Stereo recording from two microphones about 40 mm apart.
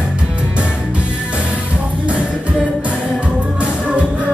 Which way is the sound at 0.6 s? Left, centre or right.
Right.